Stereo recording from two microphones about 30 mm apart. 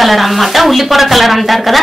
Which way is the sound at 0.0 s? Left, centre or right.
Centre.